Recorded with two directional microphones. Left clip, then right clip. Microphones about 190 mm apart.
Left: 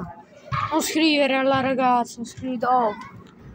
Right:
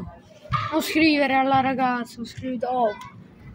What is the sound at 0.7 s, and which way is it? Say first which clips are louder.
A woman's voice: even; 10° right (ahead or behind).